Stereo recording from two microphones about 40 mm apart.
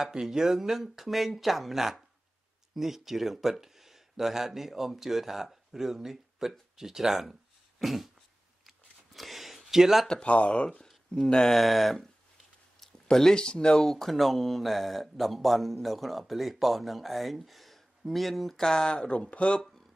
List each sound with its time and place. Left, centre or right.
0.0 s speech: centre
8.6 s a sound: centre
10.2 s speech: left; by 11.6 s centre
11.6 s speech: centre
12.8 s a sound: centre
13.4 s speech: left; by 18.6 s centre
18.6 s speech: centre